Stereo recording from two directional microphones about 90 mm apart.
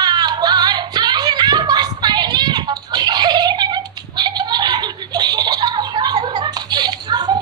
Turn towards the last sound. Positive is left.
turn(degrees=-50)  # may be behind; listen again after turning